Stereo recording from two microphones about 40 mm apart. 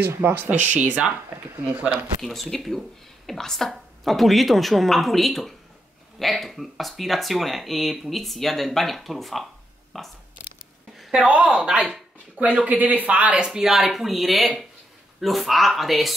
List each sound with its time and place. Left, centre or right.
0.0 s speech: right
0.5 s speech: right
2.2 s speech: centre
11.1 s speech: right
12.4 s speech: right
13.4 s speech: centre